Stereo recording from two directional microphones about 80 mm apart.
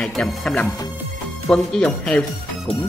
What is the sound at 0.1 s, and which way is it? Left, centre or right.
Speech, centre.